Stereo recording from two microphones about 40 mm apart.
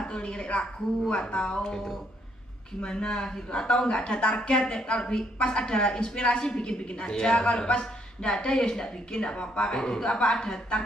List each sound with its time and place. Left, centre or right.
0.0 s a woman's voice: left
2.8 s a woman's voice: left